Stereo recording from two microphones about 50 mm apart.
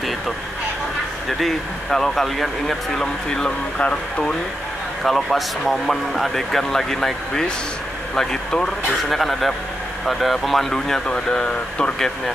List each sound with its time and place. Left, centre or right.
1.9 s speech: centre
3.0 s speech: centre
5.0 s a man's voice: centre
9.1 s a man's voice: centre